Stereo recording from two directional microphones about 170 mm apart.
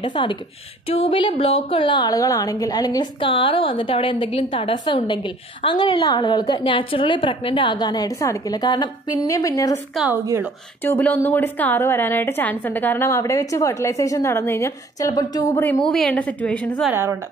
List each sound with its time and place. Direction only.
0.0 s a woman's voice: 30° left (ahead or behind)
10.8 s a woman's voice: 10° left (ahead or behind)
15.5 s a woman's voice: 10° left (ahead or behind)
16.9 s a woman's voice: 15° right (ahead or behind)